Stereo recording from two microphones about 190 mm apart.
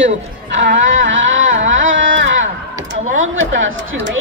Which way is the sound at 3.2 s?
90° right.